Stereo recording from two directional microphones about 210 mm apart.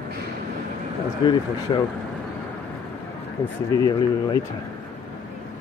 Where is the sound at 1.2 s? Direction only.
20° left (ahead or behind).